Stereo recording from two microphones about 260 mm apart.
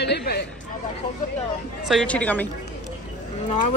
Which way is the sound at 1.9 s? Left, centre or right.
Centre.